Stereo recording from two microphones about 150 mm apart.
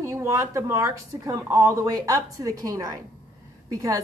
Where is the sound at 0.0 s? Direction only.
20° right (ahead or behind).